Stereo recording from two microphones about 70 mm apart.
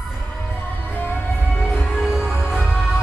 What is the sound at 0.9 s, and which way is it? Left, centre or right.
Music, left.